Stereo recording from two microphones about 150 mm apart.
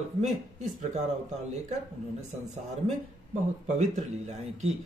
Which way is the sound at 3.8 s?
50° right (ahead or behind).